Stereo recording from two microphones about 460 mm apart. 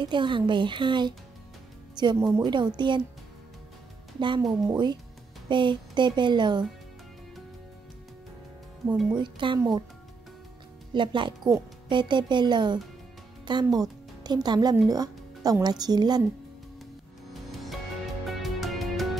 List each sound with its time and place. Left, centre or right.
0.0 s speech: centre
4.2 s speech: centre
8.8 s speech: centre
10.9 s speech: centre
17.3 s music: centre